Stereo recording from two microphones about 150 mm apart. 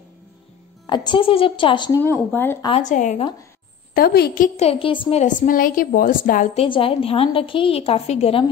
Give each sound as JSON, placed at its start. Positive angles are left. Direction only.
{"t": 0.8, "sound": "a woman's voice", "side_deg": 30}
{"t": 2.3, "sound": "speech", "side_deg": 15}
{"t": 2.7, "sound": "a woman's voice", "side_deg": 55}
{"t": 3.9, "sound": "a woman's voice", "side_deg": 90}
{"t": 4.6, "sound": "a woman's voice", "side_deg": 40}
{"t": 5.2, "sound": "a woman's voice", "side_deg": 60}
{"t": 6.5, "sound": "a woman's voice", "side_deg": 40}